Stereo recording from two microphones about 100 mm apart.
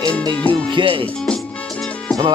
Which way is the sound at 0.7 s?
60° right (ahead or behind).